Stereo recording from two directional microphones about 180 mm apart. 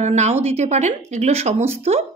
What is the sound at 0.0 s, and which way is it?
Speech, 40° right (ahead or behind).